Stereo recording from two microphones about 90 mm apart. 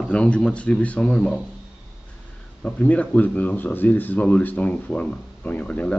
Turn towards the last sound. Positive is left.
turn(degrees=15)  # may be behind; listen again after turning